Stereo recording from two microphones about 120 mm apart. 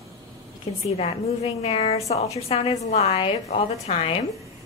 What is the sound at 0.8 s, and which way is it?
A woman's voice, 60° left (ahead or behind).